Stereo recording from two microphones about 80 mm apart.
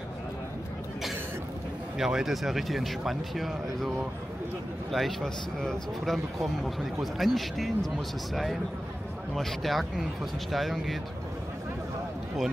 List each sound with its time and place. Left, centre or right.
2.0 s speech: centre
4.9 s speech: centre
9.3 s speech: centre